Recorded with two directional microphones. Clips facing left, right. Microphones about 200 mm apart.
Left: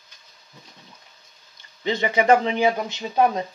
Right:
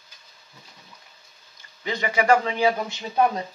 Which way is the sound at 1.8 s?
25° left (ahead or behind).